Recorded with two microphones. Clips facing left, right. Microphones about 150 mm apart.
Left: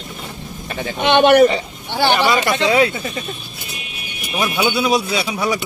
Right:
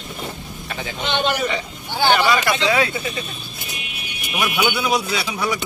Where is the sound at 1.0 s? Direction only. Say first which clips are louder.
Left 11 dB; 65° left (ahead or behind).